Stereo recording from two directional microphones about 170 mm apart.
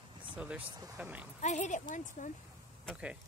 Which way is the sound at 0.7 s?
20° right (ahead or behind).